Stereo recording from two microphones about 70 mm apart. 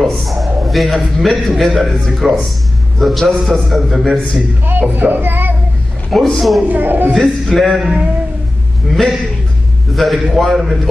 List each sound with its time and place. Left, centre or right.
0.0 s a man's voice: centre
4.6 s a child's voice: right
6.0 s a man's voice: centre
6.7 s a child's voice: right
7.2 s a man's voice: centre
8.9 s a man's voice: centre